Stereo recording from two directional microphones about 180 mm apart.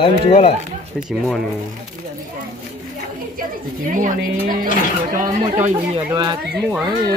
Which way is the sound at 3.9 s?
50° right (ahead or behind).